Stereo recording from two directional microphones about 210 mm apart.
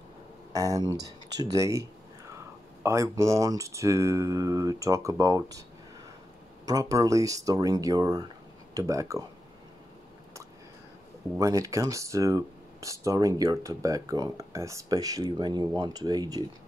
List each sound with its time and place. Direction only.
0.5 s speech: 15° right (ahead or behind)
6.6 s speech: 15° right (ahead or behind)
11.3 s speech: 15° right (ahead or behind)